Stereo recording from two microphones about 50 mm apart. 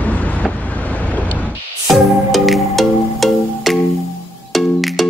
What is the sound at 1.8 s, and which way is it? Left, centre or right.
Music, centre.